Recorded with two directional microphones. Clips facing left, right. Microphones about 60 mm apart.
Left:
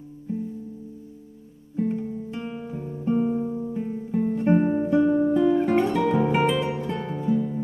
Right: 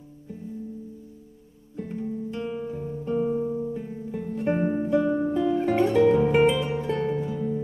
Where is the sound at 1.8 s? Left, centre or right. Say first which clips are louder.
Left 5 dB; left.